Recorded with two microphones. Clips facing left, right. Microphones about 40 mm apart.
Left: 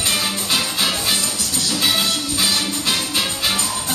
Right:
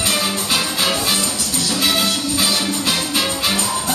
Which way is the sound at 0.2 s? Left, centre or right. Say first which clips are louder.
Right 1 dB; centre.